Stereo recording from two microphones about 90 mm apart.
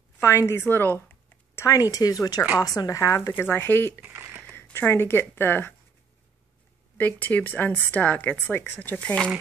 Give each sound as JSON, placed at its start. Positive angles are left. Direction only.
{"t": 0.2, "sound": "speech", "side_deg": 30}
{"t": 1.5, "sound": "speech", "side_deg": 35}
{"t": 3.3, "sound": "speech", "side_deg": 20}
{"t": 4.0, "sound": "a sound", "side_deg": -20}
{"t": 4.5, "sound": "a sound", "side_deg": 15}
{"t": 4.7, "sound": "speech", "side_deg": 25}
{"t": 7.0, "sound": "speech", "side_deg": 20}